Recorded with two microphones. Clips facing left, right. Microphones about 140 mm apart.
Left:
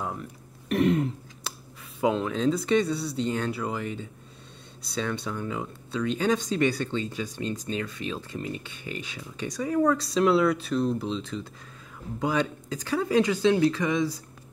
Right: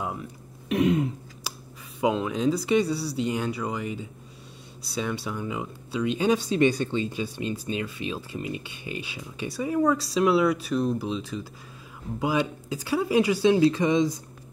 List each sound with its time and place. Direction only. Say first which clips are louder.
0.0 s a sound: right 1 dB; 5° right (ahead or behind)
2.0 s speech: even; centre (ahead or behind)
3.5 s speech: right 1 dB; centre (ahead or behind); by 14.1 s 20° right (ahead or behind)